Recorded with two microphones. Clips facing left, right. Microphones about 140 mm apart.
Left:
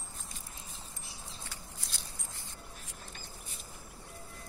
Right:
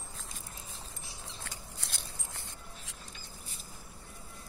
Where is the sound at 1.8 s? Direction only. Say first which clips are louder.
Right 2 dB; 70° right (ahead or behind).